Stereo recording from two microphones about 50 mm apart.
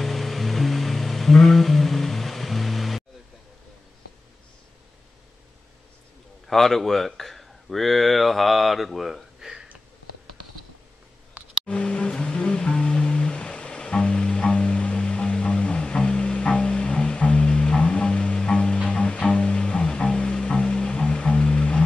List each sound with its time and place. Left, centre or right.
0.0 s music: centre
6.4 s speech: centre
11.6 s music: left